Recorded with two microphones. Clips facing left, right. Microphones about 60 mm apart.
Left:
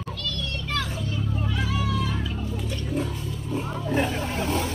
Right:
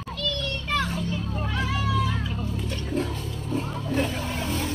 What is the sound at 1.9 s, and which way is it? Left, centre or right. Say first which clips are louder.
Music: right 2 dB; centre.